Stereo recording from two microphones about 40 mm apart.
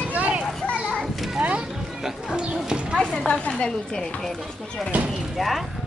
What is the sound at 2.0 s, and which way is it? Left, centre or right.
Speech, centre.